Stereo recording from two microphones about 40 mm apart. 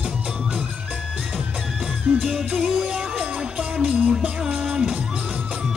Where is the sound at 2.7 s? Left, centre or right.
Centre.